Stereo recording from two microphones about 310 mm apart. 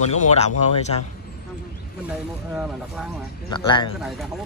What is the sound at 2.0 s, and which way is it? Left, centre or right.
Speech, centre.